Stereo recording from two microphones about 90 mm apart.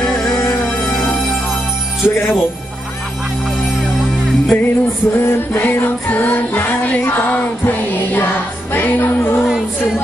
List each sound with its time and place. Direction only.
0.0 s music: 5° left (ahead or behind)
2.0 s music: 25° left (ahead or behind)
4.5 s music: 20° left (ahead or behind)